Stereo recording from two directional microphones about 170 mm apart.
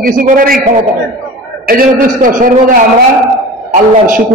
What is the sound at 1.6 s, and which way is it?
Speech, 55° right (ahead or behind).